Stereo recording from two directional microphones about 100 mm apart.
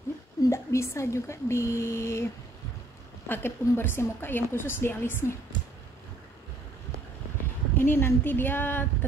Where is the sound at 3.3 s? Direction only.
20° left (ahead or behind).